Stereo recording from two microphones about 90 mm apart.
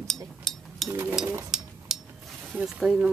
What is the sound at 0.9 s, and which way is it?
Speech, 25° right (ahead or behind).